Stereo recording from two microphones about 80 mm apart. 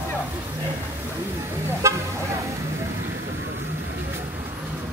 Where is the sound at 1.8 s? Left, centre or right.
Right.